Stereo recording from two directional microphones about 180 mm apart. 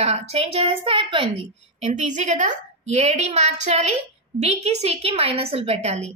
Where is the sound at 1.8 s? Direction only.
40° right (ahead or behind).